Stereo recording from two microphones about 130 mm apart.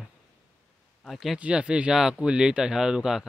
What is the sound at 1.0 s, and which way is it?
Speech, centre (ahead or behind).